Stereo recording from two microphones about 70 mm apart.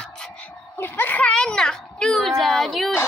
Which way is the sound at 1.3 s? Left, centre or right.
Centre.